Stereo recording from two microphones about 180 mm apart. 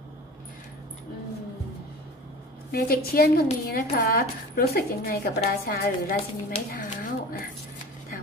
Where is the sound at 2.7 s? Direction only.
55° left (ahead or behind).